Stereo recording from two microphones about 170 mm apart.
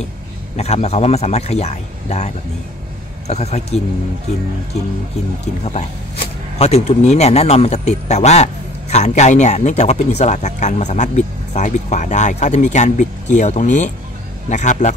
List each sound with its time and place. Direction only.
0.6 s a man's voice: 40° left (ahead or behind)
6.6 s speech: 40° left (ahead or behind)